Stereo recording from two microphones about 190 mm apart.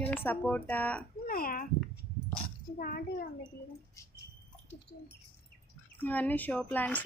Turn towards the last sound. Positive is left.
turn(degrees=10)  # may be behind; listen again after turning